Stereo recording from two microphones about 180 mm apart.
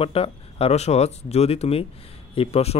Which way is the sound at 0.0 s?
30° left (ahead or behind).